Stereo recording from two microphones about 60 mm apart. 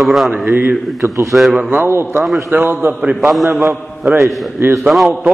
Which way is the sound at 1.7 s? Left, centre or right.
Right.